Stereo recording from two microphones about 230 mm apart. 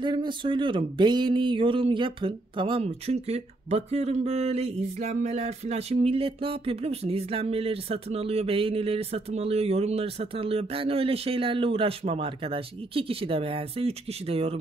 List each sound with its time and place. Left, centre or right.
0.0 s speech: centre